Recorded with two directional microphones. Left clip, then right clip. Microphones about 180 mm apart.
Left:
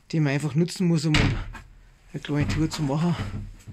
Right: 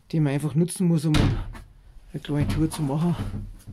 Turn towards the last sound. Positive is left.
turn(degrees=0)  # may be behind; listen again after turning